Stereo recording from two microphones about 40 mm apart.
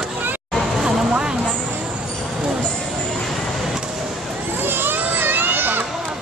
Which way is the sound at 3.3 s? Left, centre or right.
Centre.